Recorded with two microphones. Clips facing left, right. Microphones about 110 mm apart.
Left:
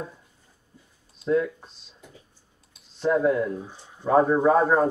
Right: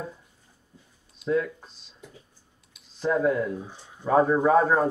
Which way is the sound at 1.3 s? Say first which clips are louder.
Left 2 dB; 5° left (ahead or behind).